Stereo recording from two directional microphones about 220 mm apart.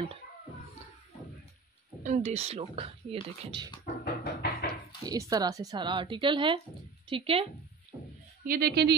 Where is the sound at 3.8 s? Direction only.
45° left (ahead or behind).